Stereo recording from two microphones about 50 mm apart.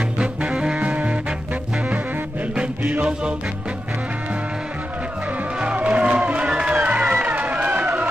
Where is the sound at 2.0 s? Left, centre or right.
Right.